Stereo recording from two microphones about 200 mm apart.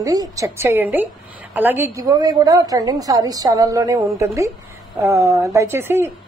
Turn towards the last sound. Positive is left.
turn(degrees=-10)  # may be behind; listen again after turning